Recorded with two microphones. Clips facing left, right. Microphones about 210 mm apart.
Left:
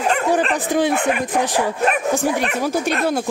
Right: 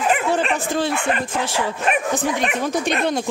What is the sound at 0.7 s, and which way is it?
Speech, 15° left (ahead or behind).